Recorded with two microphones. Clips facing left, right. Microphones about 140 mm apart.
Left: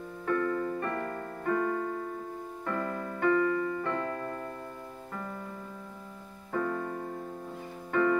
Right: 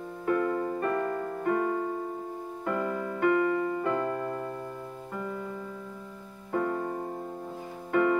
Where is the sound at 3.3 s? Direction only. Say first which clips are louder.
Even; 25° right (ahead or behind).